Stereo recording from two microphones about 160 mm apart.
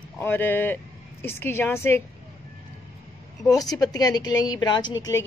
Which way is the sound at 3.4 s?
20° left (ahead or behind).